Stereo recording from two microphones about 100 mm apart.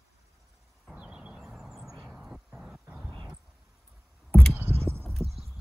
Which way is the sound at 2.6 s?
5° right (ahead or behind).